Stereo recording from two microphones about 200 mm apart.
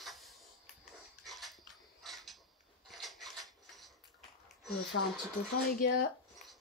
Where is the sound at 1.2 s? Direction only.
Centre (ahead or behind).